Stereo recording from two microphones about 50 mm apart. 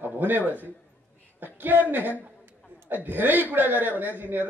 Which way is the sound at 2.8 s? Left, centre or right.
Right.